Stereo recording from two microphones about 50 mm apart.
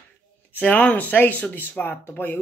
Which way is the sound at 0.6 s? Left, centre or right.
Left.